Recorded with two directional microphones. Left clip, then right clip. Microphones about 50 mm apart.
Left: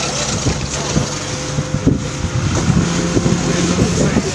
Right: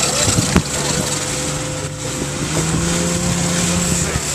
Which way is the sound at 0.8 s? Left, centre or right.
Right.